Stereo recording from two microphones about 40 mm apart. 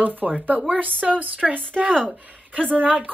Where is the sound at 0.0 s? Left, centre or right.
Right.